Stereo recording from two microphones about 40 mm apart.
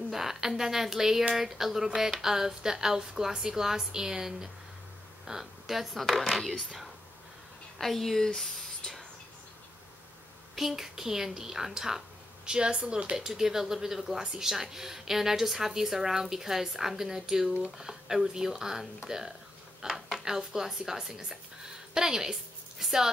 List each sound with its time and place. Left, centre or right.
0.1 s speech: centre
7.8 s speech: centre
8.4 s a sound: centre
10.5 s a woman's voice: centre